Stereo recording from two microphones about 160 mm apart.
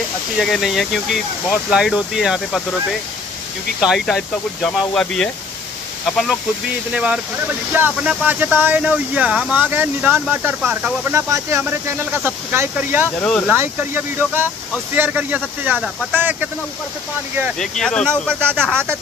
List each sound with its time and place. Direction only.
0.4 s speech: centre (ahead or behind)
3.8 s speech: centre (ahead or behind)
6.9 s speech: 5° right (ahead or behind)
11.1 s speech: 20° right (ahead or behind)
17.6 s speech: 5° left (ahead or behind)
18.3 s speech: 15° right (ahead or behind)
18.6 s speech: 5° left (ahead or behind)